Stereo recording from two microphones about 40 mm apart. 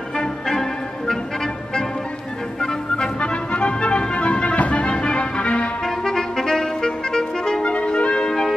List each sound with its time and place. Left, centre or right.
0.5 s music: centre
3.2 s music: left
5.9 s clarinet: centre
7.6 s music: left
8.3 s music: centre